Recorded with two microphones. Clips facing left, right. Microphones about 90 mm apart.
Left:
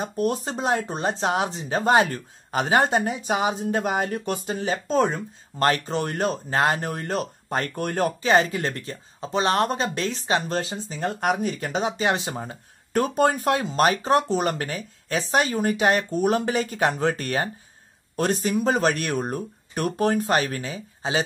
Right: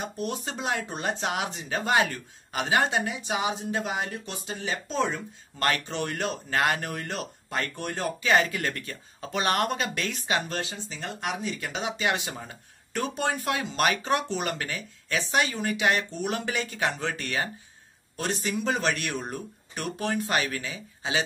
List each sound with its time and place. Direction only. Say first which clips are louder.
0.0 s speech: left 7 dB; 40° left (ahead or behind)
8.2 s speech: left 2 dB; 35° left (ahead or behind)